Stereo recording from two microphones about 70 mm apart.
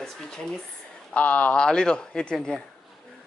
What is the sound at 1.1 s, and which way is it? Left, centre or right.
Speech, left.